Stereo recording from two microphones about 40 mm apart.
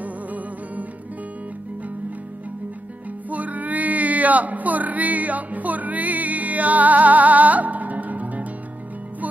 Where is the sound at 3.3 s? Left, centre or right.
Right.